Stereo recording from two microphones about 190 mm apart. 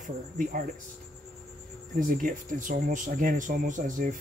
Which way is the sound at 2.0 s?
45° right (ahead or behind).